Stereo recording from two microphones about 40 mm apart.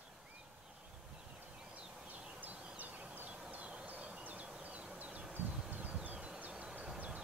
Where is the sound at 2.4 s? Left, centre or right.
Right.